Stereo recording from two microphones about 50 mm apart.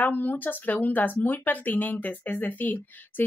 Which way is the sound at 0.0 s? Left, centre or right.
Left.